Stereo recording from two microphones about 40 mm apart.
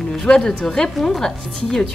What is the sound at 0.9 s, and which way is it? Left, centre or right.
Speech, centre.